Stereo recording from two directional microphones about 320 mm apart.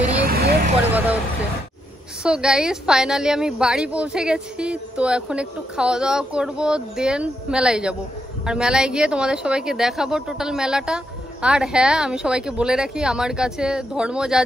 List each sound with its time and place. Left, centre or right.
0.3 s vehicle: right
2.2 s a woman's voice: centre